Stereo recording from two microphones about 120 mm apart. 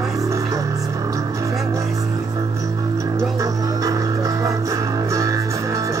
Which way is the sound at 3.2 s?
25° right (ahead or behind).